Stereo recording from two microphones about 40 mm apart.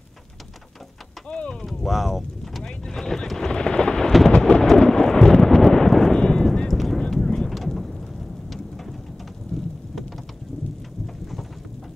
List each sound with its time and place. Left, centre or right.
1.3 s speech: left
1.7 s boat: centre
2.6 s thunder: centre
4.6 s a sound: centre
6.1 s clip-clop: centre
6.7 s clip-clop: centre
7.2 s vehicle: centre
7.5 s thunder: centre
9.5 s rain: centre